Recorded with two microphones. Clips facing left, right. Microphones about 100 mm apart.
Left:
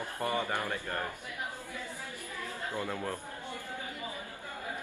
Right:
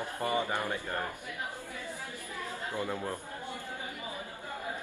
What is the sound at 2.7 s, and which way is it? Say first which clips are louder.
Speech: right 1 dB; 15° right (ahead or behind).